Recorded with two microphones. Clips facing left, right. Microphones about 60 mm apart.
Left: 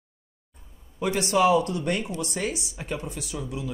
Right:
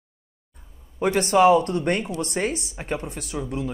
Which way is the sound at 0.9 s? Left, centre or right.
Right.